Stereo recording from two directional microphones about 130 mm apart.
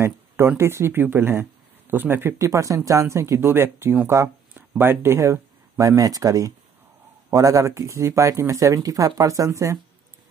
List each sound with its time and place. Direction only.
0.5 s speech: 20° right (ahead or behind)